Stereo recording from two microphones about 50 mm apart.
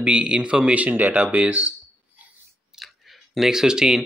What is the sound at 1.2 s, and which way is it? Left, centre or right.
Speech, right.